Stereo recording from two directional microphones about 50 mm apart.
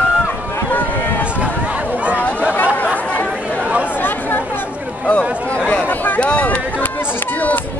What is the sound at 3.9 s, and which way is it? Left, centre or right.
Chatter, left.